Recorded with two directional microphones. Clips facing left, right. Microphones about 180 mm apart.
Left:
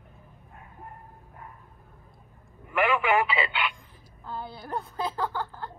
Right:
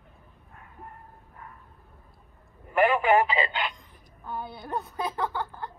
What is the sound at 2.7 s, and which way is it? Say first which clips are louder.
Telephone: right 3 dB; 40° right (ahead or behind).